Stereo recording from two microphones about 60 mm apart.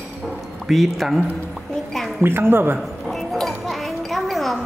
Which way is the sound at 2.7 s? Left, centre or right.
Centre.